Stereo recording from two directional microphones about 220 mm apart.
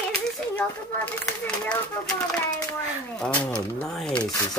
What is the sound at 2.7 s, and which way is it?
Speech, 5° left (ahead or behind).